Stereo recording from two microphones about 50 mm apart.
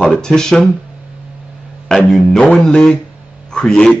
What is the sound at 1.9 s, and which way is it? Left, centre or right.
Speech, centre.